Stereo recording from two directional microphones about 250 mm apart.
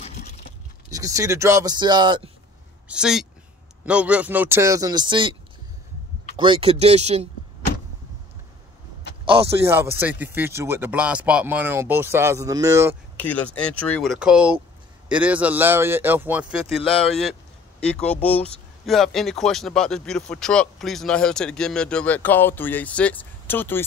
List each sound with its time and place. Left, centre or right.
0.0 s a sound: left
0.8 s speech: centre
2.9 s a man's voice: centre
6.3 s speech: centre
9.2 s a sound: right
9.7 s speech: centre
13.2 s a man's voice: centre